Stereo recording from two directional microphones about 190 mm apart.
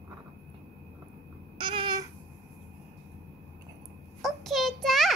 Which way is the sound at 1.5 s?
25° right (ahead or behind).